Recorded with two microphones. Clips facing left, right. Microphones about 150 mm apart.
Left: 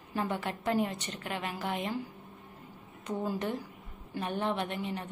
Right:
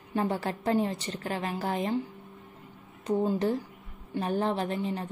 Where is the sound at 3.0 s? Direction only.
25° right (ahead or behind).